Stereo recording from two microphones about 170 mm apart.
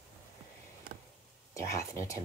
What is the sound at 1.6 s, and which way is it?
Speech, 20° left (ahead or behind).